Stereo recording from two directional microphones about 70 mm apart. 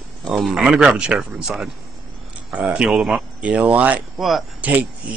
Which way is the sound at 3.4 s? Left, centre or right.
Right.